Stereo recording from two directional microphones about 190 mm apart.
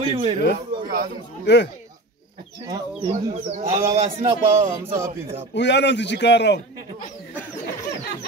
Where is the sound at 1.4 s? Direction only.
65° left (ahead or behind).